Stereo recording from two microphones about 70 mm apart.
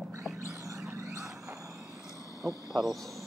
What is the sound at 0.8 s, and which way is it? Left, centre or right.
Vehicle, right.